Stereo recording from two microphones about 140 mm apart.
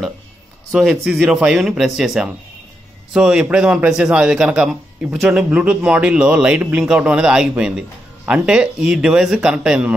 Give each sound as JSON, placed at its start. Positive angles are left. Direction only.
{"t": 0.7, "sound": "a man's voice", "side_deg": -5}